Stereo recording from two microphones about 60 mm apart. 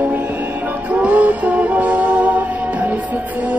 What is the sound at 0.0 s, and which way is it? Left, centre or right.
Music, right.